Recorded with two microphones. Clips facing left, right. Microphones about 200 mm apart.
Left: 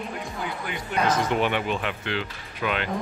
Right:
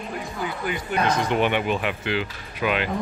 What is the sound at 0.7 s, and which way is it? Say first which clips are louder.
Speech: right 1 dB; centre (ahead or behind).